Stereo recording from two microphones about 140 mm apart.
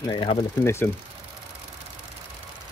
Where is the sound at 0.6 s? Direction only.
20° left (ahead or behind).